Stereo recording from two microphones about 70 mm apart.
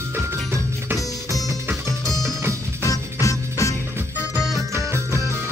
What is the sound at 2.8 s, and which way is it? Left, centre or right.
Music, left.